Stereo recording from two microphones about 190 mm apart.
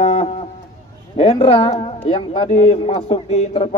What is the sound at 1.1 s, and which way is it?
Speech, 30° left (ahead or behind).